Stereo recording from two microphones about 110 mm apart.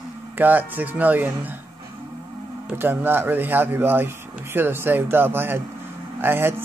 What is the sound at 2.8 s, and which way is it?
Speech, 20° right (ahead or behind).